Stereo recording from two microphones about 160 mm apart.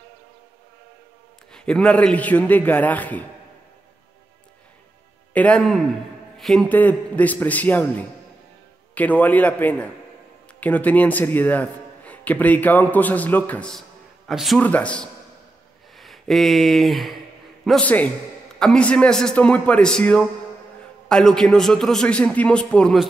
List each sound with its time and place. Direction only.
1.5 s a man's voice: 5° left (ahead or behind)
5.3 s a man's voice: 10° left (ahead or behind)
8.9 s a man's voice: 10° left (ahead or behind)